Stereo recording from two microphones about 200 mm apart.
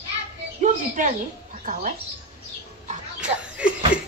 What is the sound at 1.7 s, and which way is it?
Speech, 45° right (ahead or behind).